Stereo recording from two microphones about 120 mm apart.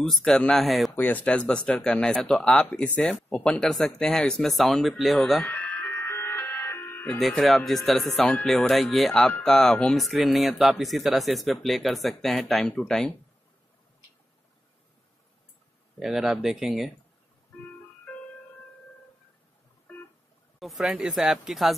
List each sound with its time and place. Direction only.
0.0 s speech: 5° left (ahead or behind)
0.9 s speech: 15° left (ahead or behind)
5.4 s music: 15° left (ahead or behind)
7.2 s speech: centre (ahead or behind)
16.0 s speech: centre (ahead or behind)
20.5 s speech: centre (ahead or behind)